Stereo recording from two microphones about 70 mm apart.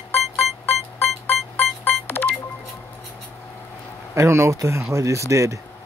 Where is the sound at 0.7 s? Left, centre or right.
Left.